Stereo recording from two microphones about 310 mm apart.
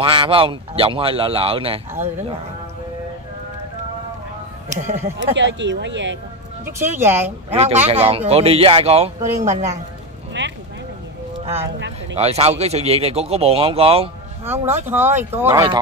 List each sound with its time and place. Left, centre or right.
0.0 s speech: centre
4.6 s speech: right
5.3 s speech: right
6.6 s speech: centre
7.4 s speech: centre
10.4 s a sound: right
12.2 s speech: centre
14.4 s speech: centre